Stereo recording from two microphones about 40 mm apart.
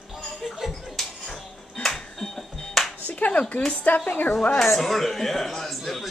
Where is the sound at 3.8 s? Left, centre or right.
Left.